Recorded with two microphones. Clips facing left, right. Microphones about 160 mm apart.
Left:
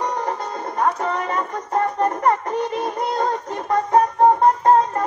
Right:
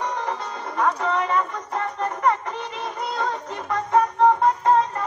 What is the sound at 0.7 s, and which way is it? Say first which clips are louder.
Music: even; 45° left (ahead or behind).